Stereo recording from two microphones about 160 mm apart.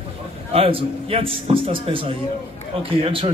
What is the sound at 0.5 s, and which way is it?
A man's voice, 35° right (ahead or behind).